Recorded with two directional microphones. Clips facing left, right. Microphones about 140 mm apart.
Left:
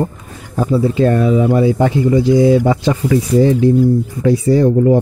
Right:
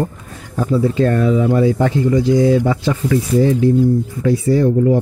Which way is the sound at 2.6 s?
25° left (ahead or behind).